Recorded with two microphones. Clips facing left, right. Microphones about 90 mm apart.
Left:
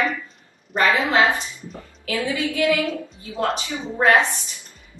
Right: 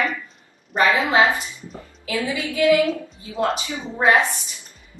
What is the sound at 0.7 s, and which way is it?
A woman's voice, 5° right (ahead or behind).